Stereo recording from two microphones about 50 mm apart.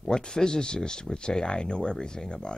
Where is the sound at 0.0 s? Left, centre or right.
Centre.